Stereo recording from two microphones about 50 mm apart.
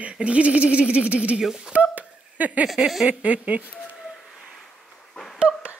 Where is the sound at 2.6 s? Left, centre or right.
Centre.